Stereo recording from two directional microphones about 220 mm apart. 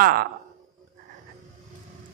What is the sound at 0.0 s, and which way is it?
Speech, 40° right (ahead or behind).